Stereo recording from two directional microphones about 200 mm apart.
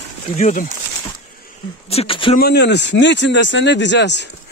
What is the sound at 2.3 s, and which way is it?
Speech, 55° left (ahead or behind).